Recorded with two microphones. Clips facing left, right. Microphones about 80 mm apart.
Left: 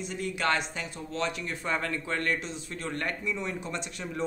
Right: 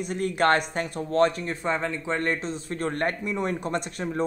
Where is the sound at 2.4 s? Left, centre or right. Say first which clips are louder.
Right 7 dB; right.